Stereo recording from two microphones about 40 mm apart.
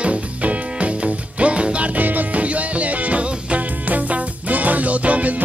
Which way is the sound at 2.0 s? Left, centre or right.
Right.